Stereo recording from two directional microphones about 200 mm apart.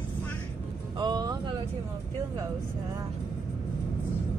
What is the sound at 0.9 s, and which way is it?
Speech, 20° right (ahead or behind).